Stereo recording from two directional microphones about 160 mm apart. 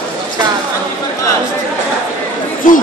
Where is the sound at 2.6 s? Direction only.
55° left (ahead or behind).